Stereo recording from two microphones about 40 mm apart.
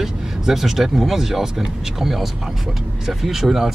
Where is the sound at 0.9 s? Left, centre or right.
Centre.